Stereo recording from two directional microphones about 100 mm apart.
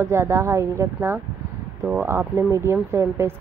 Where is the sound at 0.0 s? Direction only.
25° right (ahead or behind).